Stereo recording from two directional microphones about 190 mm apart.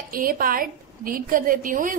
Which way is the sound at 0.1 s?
50° right (ahead or behind).